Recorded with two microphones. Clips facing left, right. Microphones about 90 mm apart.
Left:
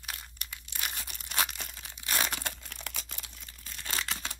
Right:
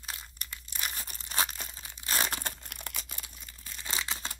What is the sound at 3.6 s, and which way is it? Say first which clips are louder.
Crumpling: even; 10° right (ahead or behind).